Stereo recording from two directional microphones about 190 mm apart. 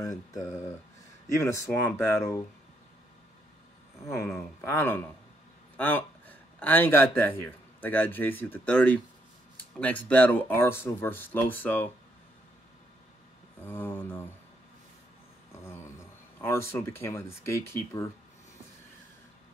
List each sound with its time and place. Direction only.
0.0 s a sound: 20° left (ahead or behind)
1.3 s speech: 15° left (ahead or behind)
4.0 s speech: 15° left (ahead or behind)
13.7 s speech: 10° left (ahead or behind)
15.5 s speech: 15° left (ahead or behind)